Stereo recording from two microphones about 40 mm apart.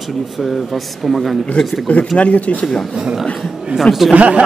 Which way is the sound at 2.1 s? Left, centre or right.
Left.